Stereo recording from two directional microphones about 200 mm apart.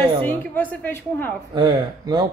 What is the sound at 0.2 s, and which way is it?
A woman's voice, 10° left (ahead or behind).